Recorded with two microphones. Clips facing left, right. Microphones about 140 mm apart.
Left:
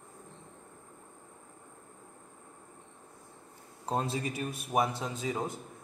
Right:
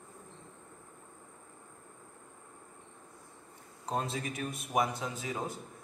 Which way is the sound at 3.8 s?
30° left (ahead or behind).